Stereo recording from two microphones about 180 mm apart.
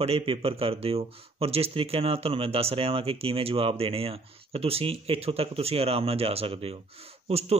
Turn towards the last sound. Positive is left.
turn(degrees=-35)  # may be behind; listen again after turning